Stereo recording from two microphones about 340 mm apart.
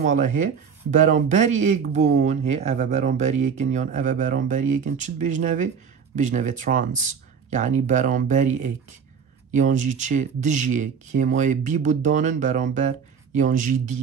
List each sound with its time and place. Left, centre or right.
0.0 s speech: right